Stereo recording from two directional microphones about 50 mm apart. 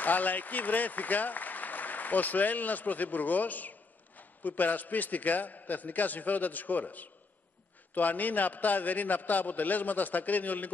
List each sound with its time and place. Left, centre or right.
0.0 s a man's voice: left